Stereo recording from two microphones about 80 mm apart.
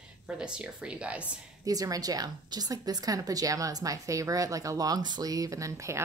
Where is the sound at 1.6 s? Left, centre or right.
Right.